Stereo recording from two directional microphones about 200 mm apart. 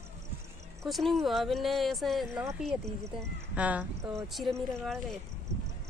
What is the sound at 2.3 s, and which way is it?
Speech, 15° right (ahead or behind).